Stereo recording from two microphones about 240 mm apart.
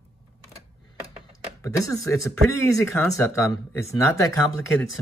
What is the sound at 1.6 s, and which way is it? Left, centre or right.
Speech, centre.